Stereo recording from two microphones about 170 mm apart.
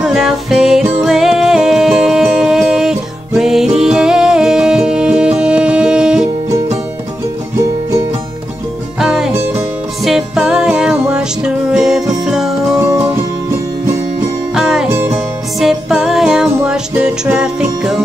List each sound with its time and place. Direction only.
0.0 s music: centre (ahead or behind)
9.0 s music: centre (ahead or behind)
12.7 s music: 15° right (ahead or behind)
14.5 s music: centre (ahead or behind)
14.9 s music: 15° right (ahead or behind)
15.6 s music: centre (ahead or behind)